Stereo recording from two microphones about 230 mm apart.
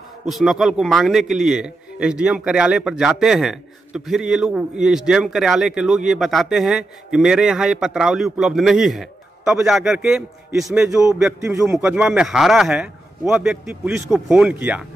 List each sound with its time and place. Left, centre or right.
0.3 s a man's voice: centre